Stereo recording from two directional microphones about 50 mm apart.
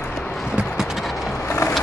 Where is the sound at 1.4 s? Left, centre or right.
Left.